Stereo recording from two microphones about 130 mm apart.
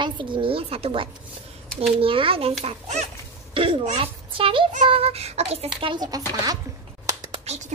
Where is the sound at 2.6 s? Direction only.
55° right (ahead or behind).